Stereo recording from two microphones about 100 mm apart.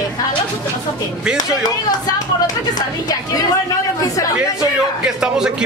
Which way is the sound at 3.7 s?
35° left (ahead or behind).